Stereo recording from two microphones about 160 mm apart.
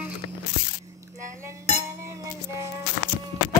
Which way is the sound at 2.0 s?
20° right (ahead or behind).